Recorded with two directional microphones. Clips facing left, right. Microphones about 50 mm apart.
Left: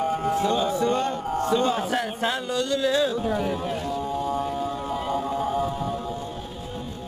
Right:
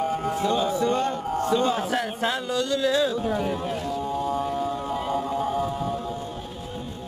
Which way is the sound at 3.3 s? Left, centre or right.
Centre.